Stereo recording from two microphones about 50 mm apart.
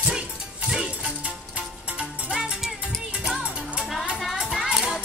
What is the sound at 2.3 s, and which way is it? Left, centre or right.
Music, centre.